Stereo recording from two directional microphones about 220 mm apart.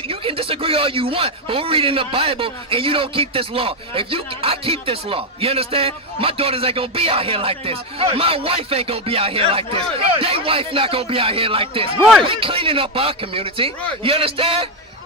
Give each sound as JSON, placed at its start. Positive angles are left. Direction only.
{"t": 0.1, "sound": "speech", "side_deg": -25}